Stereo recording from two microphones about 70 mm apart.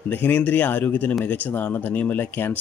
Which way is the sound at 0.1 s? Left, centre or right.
Left.